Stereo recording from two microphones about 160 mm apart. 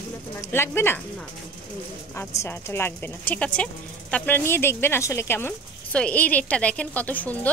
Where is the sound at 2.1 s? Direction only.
15° left (ahead or behind).